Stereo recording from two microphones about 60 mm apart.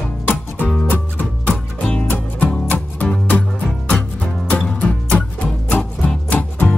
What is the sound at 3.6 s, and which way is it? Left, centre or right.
Music, centre.